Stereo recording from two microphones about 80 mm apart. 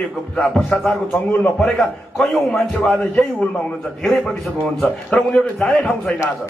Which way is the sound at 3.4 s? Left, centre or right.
Centre.